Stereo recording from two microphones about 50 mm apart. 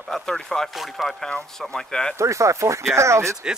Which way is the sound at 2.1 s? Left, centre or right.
Right.